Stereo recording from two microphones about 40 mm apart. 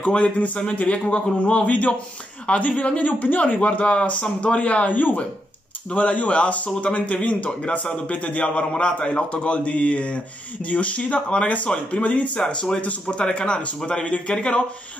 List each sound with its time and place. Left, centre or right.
0.0 s a man's voice: left
5.9 s a man's voice: left